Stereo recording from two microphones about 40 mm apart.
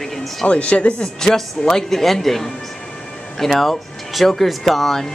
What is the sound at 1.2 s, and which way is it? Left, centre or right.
Speech, centre.